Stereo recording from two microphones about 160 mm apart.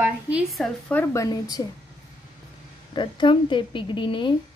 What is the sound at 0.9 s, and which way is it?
Speech, 15° left (ahead or behind).